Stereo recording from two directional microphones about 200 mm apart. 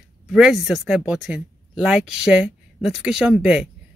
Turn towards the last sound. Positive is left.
turn(degrees=-5)  # may be behind; listen again after turning